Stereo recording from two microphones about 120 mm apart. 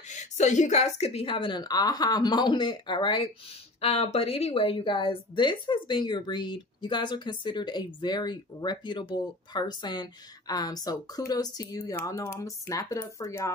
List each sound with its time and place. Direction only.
0.1 s a woman's voice: 85° left; by 1.2 s 65° left (ahead or behind)
1.2 s a woman's voice: 45° left (ahead or behind)
3.8 s a woman's voice: 60° left (ahead or behind); by 13.5 s 25° left (ahead or behind)